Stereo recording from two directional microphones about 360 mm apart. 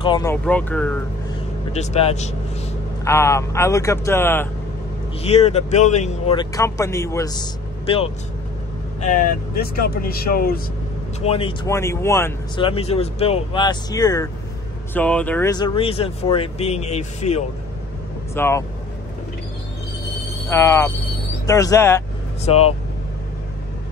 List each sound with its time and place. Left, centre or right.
0.0 s speech: centre
1.7 s speech: centre
5.2 s speech: centre
18.3 s speech: centre
20.4 s speech: centre